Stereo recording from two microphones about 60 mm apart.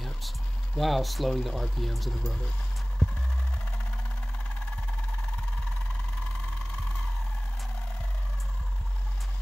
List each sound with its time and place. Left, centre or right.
0.7 s speech: centre